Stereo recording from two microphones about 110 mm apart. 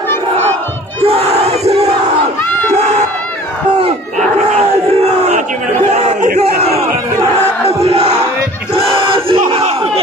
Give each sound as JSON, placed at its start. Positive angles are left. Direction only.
{"t": 1.0, "sound": "crowd", "side_deg": -75}
{"t": 5.9, "sound": "battle cry", "side_deg": -75}
{"t": 8.7, "sound": "crowd", "side_deg": -55}